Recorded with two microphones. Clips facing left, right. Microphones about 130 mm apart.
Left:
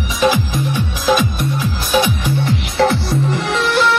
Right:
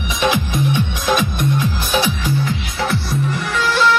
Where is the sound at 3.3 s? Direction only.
75° left (ahead or behind).